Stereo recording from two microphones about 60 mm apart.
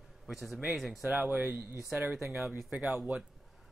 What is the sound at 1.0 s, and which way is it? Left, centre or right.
Speech, centre.